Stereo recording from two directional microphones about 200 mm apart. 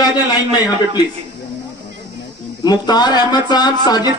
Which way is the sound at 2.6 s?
20° left (ahead or behind).